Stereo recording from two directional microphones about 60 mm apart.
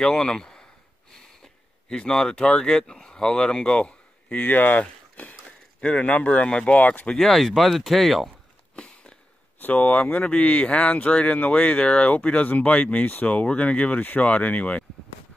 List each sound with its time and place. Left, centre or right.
0.0 s speech: centre
4.5 s speech: left
7.1 s speech: centre
8.7 s a sound: centre
9.6 s speech: left